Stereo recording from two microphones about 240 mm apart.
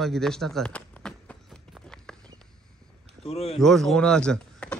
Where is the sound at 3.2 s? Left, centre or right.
Left.